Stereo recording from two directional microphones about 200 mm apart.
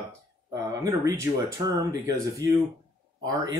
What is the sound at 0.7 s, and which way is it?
Speech, 15° right (ahead or behind).